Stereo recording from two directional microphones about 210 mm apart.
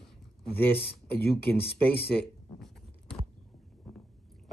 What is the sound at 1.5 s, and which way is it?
Speech, 10° left (ahead or behind).